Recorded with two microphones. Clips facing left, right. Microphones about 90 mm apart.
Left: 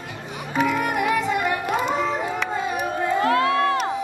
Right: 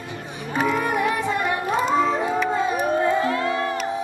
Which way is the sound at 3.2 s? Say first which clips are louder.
Left 4 dB; 65° left (ahead or behind).